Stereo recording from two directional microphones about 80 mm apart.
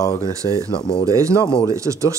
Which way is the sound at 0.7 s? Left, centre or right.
Left.